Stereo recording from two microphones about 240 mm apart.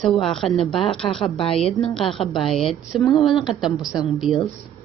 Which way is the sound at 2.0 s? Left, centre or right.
Centre.